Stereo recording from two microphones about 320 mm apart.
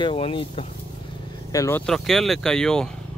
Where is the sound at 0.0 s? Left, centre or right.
Centre.